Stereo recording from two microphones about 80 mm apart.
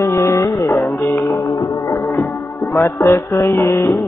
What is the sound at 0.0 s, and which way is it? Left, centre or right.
Music, left.